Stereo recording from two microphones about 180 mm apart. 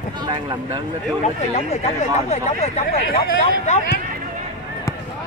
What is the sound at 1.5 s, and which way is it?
Speech, 35° left (ahead or behind).